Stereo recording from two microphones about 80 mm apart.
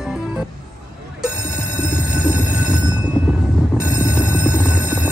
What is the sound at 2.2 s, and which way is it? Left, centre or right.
Train, centre.